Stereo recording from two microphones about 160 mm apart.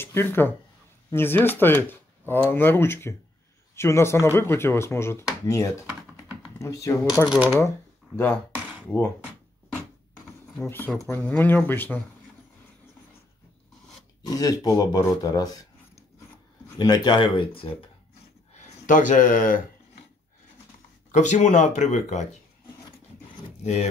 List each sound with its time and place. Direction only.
0.0 s speech: 15° left (ahead or behind)
7.2 s speech: 10° right (ahead or behind)
8.8 s speech: 10° left (ahead or behind)
11.0 s speech: 15° left (ahead or behind)
14.2 s speech: 25° left (ahead or behind)
16.7 s speech: 25° left (ahead or behind)
18.5 s speech: 50° left (ahead or behind)
21.1 s speech: 50° left (ahead or behind)
23.6 s speech: 45° left (ahead or behind)